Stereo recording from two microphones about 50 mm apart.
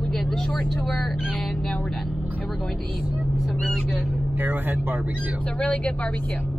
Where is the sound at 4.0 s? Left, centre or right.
Right.